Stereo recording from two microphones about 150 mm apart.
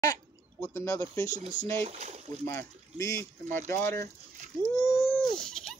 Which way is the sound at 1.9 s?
50° right (ahead or behind).